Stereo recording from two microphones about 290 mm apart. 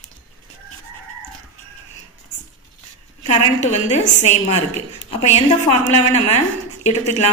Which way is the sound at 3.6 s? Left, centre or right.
Left.